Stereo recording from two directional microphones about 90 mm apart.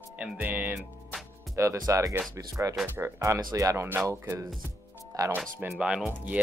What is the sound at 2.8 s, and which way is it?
Speech, 25° right (ahead or behind).